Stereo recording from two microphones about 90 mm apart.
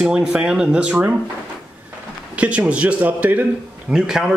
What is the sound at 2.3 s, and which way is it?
Speech, 15° right (ahead or behind).